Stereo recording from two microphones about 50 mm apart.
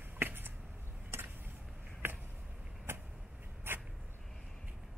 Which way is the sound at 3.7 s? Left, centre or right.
Right.